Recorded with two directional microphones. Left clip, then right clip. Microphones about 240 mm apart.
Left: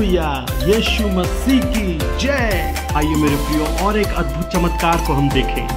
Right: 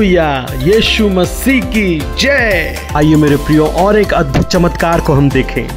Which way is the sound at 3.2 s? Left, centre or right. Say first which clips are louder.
Right 8 dB; centre.